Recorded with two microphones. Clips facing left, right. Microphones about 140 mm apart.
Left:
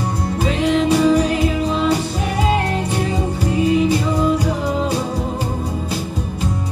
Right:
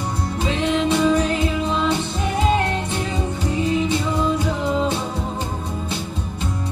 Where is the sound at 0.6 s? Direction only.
Centre (ahead or behind).